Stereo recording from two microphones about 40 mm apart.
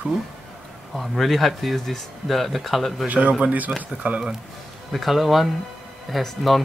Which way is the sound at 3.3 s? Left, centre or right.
Right.